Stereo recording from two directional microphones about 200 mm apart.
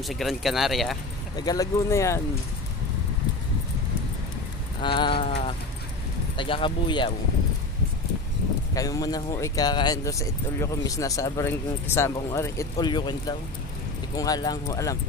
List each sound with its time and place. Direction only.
0.0 s speech: centre (ahead or behind)
1.3 s speech: 20° left (ahead or behind)
4.8 s speech: 25° left (ahead or behind)
8.7 s speech: 15° left (ahead or behind)